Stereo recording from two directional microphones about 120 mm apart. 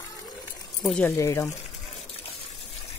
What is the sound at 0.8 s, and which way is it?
Speech, 10° left (ahead or behind).